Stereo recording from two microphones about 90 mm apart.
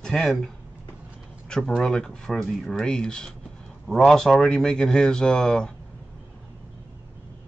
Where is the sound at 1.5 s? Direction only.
5° left (ahead or behind).